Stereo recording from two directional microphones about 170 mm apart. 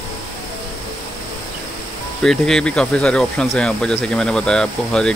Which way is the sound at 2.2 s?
5° left (ahead or behind).